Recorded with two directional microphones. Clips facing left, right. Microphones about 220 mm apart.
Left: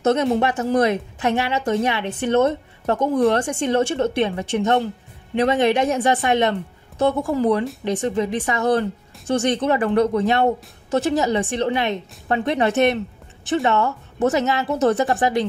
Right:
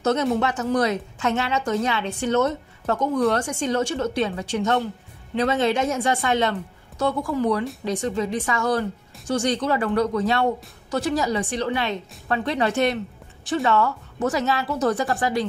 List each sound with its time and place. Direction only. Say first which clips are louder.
0.4 s a woman's voice: left 3 dB; 25° left (ahead or behind)